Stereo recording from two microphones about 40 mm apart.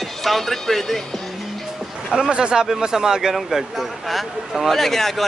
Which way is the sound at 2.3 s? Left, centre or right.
Right.